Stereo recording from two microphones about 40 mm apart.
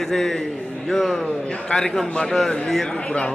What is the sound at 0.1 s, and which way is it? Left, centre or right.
A woman's voice, centre.